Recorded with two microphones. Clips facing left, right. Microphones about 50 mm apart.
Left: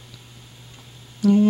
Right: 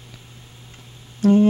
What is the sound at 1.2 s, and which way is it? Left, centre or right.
Humming, right.